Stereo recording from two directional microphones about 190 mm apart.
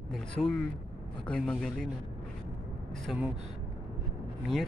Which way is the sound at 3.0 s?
5° right (ahead or behind).